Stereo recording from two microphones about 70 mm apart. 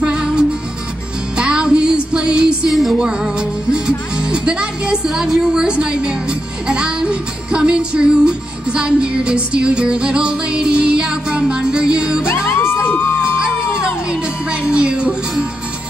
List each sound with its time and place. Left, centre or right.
0.0 s music: centre
2.7 s music: centre
3.0 s music: centre
12.4 s music: left
13.2 s music: centre